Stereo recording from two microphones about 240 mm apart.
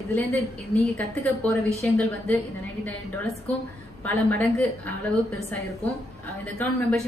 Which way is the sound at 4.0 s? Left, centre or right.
Centre.